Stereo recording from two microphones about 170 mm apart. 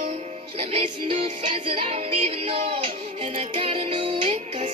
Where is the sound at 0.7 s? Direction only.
35° right (ahead or behind).